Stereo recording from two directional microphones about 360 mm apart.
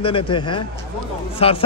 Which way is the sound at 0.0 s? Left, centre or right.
Centre.